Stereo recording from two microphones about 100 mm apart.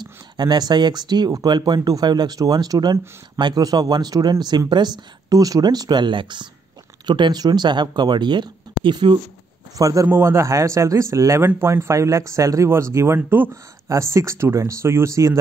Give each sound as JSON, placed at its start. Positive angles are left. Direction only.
{"t": 0.0, "sound": "speech", "side_deg": -45}
{"t": 9.8, "sound": "speech", "side_deg": -35}